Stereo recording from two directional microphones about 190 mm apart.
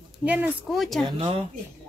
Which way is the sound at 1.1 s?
30° right (ahead or behind).